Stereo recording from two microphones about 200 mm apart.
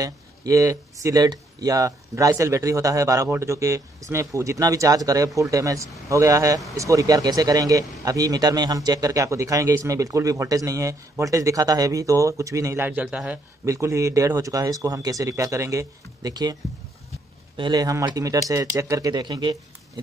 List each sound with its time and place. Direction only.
0.0 s a man's voice: 15° right (ahead or behind)
17.6 s a man's voice: 20° right (ahead or behind)